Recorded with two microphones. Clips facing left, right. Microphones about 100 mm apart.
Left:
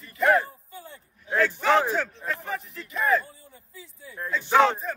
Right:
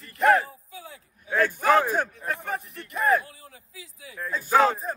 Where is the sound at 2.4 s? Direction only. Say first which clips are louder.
Right 1 dB; 60° right (ahead or behind); by 4.2 s 90° right.